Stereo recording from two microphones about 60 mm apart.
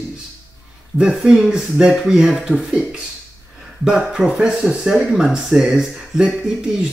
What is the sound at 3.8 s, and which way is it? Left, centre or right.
Speech, centre.